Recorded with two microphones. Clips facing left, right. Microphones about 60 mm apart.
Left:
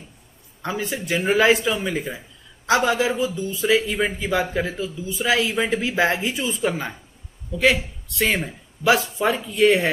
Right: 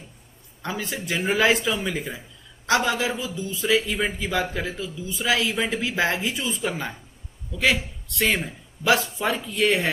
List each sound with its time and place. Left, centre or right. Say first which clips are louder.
0.6 s speech: left 3 dB; centre